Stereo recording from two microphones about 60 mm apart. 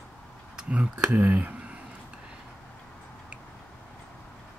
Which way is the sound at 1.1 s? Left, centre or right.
Right.